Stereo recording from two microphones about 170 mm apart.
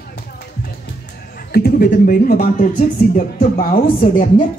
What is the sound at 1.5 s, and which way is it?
Speech, 65° left (ahead or behind).